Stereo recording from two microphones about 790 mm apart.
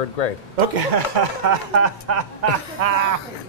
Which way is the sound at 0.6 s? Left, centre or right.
Right.